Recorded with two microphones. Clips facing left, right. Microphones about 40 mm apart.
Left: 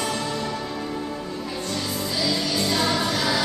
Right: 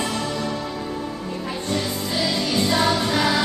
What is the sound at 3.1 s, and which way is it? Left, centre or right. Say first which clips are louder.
Music: right 3 dB; right.